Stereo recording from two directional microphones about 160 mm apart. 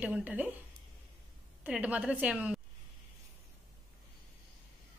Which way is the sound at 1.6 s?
10° right (ahead or behind).